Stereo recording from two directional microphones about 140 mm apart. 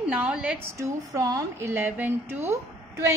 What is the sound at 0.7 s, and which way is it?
Speech, 25° right (ahead or behind).